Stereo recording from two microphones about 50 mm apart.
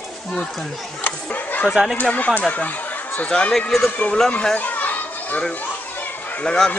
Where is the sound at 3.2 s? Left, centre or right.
Centre.